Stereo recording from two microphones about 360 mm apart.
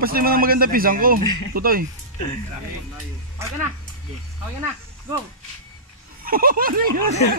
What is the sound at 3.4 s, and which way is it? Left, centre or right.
Speech, centre.